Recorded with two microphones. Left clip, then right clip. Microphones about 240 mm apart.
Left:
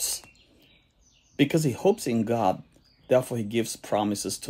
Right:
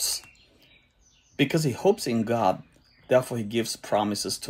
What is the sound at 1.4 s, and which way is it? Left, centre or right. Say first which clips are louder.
Speech: even; centre.